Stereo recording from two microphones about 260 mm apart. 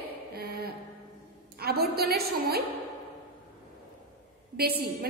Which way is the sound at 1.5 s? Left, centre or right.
Right.